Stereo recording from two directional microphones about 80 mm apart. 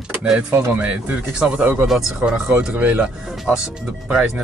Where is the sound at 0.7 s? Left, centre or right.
Centre.